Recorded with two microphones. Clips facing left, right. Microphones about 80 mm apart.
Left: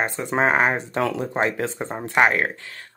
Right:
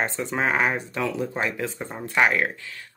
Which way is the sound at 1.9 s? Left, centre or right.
Left.